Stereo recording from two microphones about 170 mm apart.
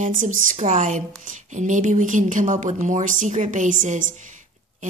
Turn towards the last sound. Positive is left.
turn(degrees=-50)  # may be behind; listen again after turning